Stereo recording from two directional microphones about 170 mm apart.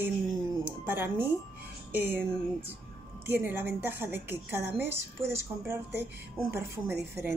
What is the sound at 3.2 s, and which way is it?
Speech, 15° right (ahead or behind).